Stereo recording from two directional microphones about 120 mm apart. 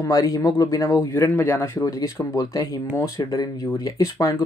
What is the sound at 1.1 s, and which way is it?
Speech, 20° left (ahead or behind).